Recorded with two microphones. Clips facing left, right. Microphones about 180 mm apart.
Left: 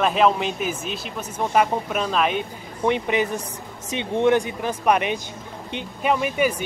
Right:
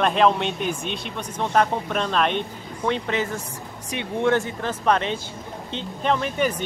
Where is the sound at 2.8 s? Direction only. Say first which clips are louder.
Left 3 dB; 15° left (ahead or behind).